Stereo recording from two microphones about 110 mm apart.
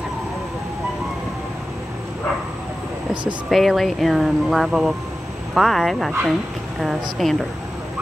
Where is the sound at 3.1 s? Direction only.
45° right (ahead or behind).